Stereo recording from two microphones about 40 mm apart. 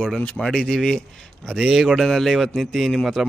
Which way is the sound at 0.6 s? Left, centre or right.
Centre.